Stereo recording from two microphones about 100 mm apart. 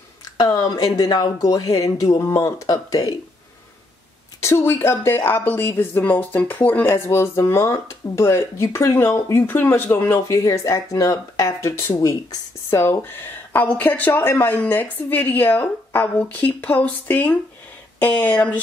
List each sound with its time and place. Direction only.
0.4 s speech: 40° left (ahead or behind)
4.4 s a woman's voice: 25° left (ahead or behind)